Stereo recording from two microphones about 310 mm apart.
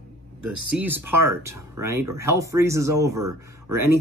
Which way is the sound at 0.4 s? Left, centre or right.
Right.